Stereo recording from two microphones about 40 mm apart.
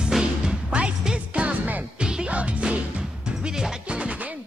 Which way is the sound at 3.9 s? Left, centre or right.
Right.